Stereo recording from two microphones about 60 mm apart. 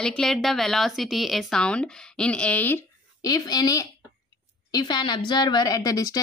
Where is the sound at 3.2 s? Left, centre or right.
Left.